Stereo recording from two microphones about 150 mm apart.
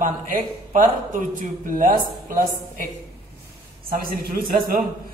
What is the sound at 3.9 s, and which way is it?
Speech, 80° right.